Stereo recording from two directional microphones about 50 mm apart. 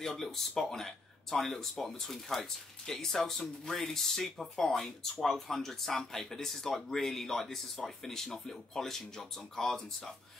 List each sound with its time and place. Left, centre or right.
0.0 s speech: centre